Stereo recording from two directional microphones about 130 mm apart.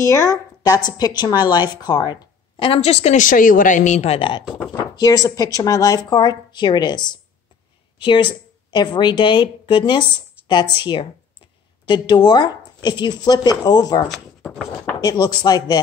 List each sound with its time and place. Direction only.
0.0 s a woman's voice: 25° left (ahead or behind)
2.7 s a woman's voice: 50° left (ahead or behind)
3.2 s speech: 90° left; by 4.5 s 40° left (ahead or behind)
4.9 s a woman's voice: 30° left (ahead or behind)
14.0 s a sound: centre (ahead or behind)
15.0 s a woman's voice: 30° left (ahead or behind)